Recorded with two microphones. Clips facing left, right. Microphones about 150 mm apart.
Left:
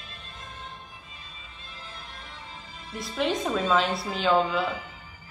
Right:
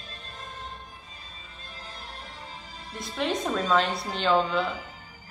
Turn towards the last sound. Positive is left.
turn(degrees=5)  # may be behind; listen again after turning